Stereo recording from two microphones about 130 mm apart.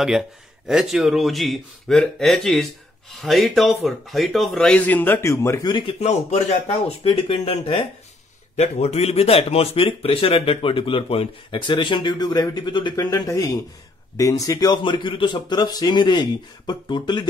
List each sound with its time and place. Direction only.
0.0 s speech: 5° right (ahead or behind); by 5.7 s 20° left (ahead or behind)
5.7 s speech: 35° left (ahead or behind)
5.9 s speech: 55° left (ahead or behind)
7.1 s speech: 45° left (ahead or behind); by 14.8 s 25° left (ahead or behind)
14.8 s speech: 40° left (ahead or behind)